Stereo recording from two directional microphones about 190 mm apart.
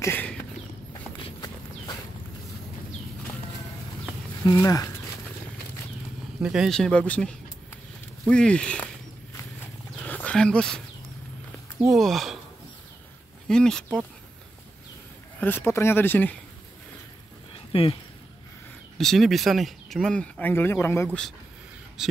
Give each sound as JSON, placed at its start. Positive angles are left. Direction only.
{"t": 0.0, "sound": "horse", "side_deg": 10}
{"t": 1.2, "sound": "clip-clop", "side_deg": 20}
{"t": 4.6, "sound": "speech", "side_deg": 15}
{"t": 6.4, "sound": "speech", "side_deg": -5}
{"t": 10.0, "sound": "roaring cats", "side_deg": 5}
{"t": 11.9, "sound": "speech", "side_deg": 0}
{"t": 13.5, "sound": "speech", "side_deg": 5}
{"t": 15.4, "sound": "speech", "side_deg": 10}
{"t": 17.7, "sound": "speech", "side_deg": 30}
{"t": 18.9, "sound": "speech", "side_deg": 0}
{"t": 22.0, "sound": "speech", "side_deg": -5}